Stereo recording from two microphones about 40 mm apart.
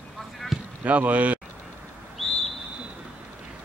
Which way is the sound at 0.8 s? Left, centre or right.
Right.